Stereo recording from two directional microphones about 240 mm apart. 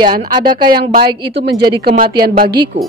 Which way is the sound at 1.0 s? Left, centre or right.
Centre.